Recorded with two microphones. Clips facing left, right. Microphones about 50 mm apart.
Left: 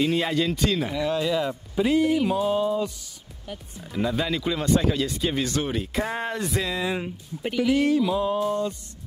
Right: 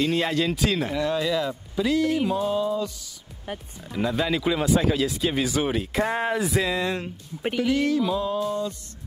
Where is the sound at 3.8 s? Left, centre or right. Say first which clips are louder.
Even; centre.